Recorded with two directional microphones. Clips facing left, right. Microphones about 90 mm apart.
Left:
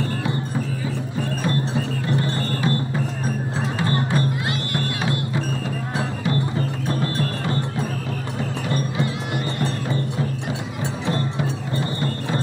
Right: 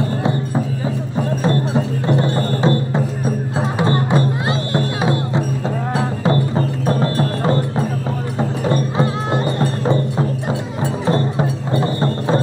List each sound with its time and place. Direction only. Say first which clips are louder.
2.0 s music: right 6 dB; 30° right (ahead or behind)
11.1 s music: right 6 dB; 30° right (ahead or behind)